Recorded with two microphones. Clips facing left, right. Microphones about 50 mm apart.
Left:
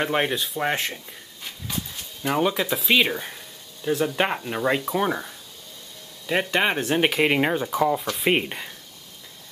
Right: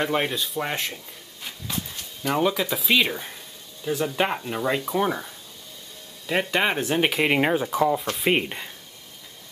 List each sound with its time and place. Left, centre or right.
0.1 s speech: centre
0.4 s speech: centre
2.2 s speech: centre